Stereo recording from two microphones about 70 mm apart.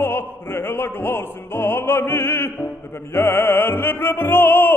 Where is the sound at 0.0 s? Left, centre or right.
Left.